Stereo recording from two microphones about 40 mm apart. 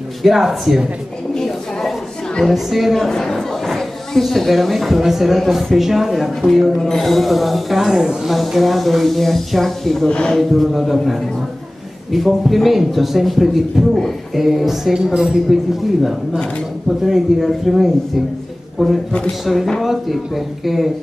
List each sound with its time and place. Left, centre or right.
0.2 s speech: centre
1.3 s a sound: centre
2.4 s speech: centre
3.0 s speech: centre
10.0 s speech: left
10.3 s speech: centre